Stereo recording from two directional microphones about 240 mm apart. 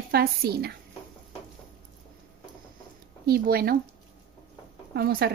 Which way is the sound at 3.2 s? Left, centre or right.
Right.